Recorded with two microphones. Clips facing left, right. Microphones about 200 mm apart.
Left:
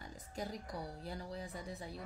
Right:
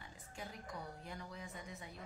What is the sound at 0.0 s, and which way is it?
A woman's voice, 40° left (ahead or behind).